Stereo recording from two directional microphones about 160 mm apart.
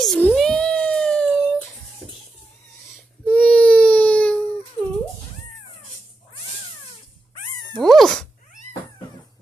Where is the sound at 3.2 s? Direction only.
10° left (ahead or behind).